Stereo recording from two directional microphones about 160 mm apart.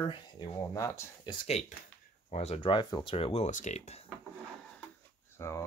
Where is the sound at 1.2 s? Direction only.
40° left (ahead or behind).